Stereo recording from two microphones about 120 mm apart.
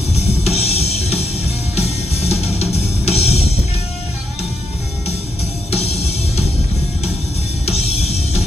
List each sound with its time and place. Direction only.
0.1 s music: 60° left (ahead or behind)
5.7 s music: 60° left (ahead or behind)
7.8 s music: 60° left (ahead or behind)